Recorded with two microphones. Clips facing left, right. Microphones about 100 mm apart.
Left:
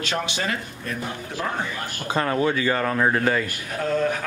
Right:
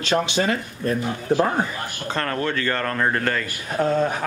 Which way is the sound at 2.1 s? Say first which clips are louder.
Left 3 dB; 10° left (ahead or behind).